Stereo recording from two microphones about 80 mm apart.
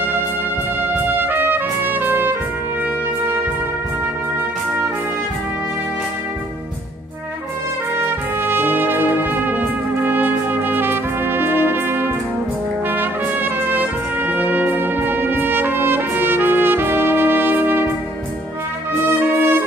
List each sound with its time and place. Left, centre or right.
0.9 s trumpet: right
8.0 s music: right
12.9 s trumpet: right
19.1 s brass instrument: right